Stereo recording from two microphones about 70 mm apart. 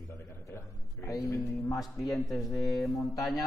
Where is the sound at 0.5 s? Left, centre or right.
Left.